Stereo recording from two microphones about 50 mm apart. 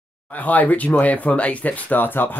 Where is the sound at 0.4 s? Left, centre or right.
Left.